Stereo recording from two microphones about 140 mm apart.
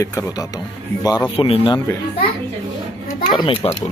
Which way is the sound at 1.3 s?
40° left (ahead or behind).